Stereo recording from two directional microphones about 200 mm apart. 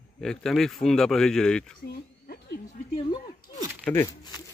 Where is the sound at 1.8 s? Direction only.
50° left (ahead or behind).